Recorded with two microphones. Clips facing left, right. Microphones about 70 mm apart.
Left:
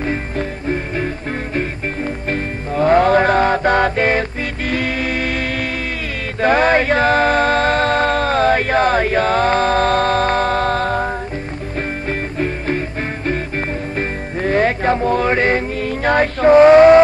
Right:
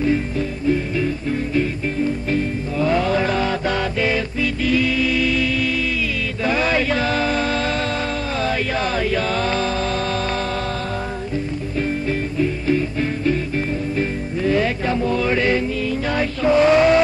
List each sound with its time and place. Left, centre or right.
0.0 s music: left
6.4 s a sound: left
12.1 s music: left